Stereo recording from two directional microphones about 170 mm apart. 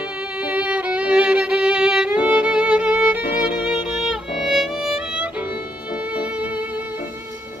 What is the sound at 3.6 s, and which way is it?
Violin, 5° right (ahead or behind).